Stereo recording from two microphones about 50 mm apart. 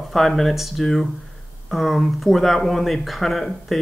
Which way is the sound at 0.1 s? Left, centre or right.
Centre.